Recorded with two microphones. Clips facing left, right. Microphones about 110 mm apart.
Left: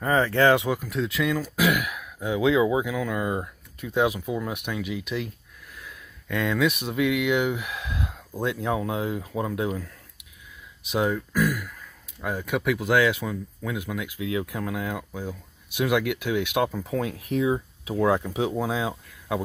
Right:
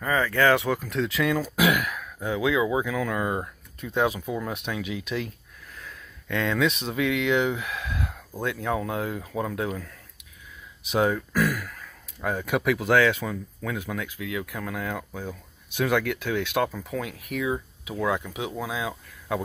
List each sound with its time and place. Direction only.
0.0 s speech: 30° left (ahead or behind); by 2.4 s 10° left (ahead or behind)
2.4 s speech: 25° left (ahead or behind)
2.7 s speech: 10° left (ahead or behind)
10.9 s speech: centre (ahead or behind)
14.2 s speech: 25° left (ahead or behind)
16.9 s speech: 30° left (ahead or behind)
18.9 s a sound: 15° left (ahead or behind)